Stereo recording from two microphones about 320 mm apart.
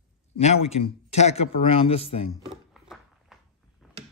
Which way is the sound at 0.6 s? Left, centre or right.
Centre.